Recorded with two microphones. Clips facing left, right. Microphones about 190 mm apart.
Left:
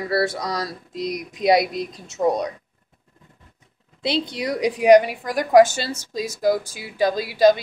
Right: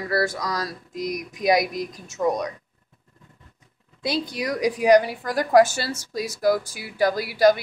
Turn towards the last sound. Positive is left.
turn(degrees=20)  # may be behind; listen again after turning